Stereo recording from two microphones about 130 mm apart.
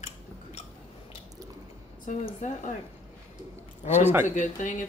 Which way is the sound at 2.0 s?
70° left (ahead or behind).